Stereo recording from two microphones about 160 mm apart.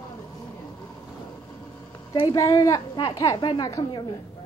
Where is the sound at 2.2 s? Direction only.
20° left (ahead or behind).